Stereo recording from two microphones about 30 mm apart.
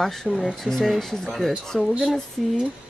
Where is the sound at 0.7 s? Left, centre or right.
Right.